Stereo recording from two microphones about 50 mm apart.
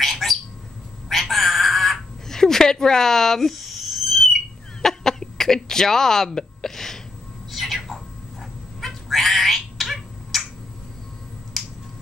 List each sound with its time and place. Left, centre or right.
0.0 s bird: centre
1.0 s a sound: centre
11.6 s finger snapping: centre